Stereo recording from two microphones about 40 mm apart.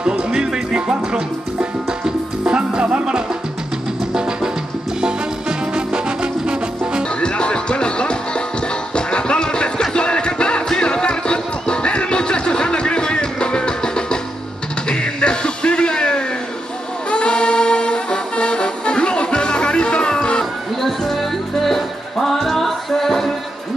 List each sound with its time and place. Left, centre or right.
0.3 s music: right
5.8 s music: right
7.2 s music: left
20.8 s music: centre